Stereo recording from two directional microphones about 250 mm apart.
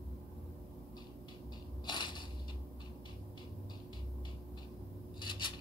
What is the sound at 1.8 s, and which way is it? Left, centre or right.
Crushing, centre.